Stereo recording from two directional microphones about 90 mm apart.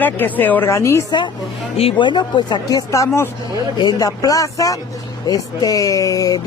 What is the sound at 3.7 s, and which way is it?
Speech, 45° left (ahead or behind).